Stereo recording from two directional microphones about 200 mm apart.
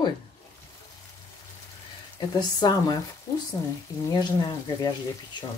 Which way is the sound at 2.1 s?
20° left (ahead or behind).